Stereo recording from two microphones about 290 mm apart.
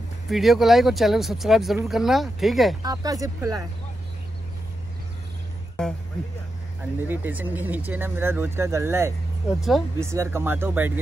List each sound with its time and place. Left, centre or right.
0.3 s speech: centre
2.8 s speech: centre
7.1 s speech: centre